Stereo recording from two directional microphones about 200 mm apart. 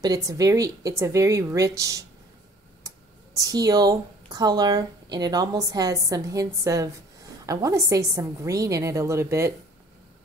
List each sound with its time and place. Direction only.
0.0 s a woman's voice: 20° right (ahead or behind)
2.8 s clicking: 15° right (ahead or behind)
3.3 s a woman's voice: 20° right (ahead or behind)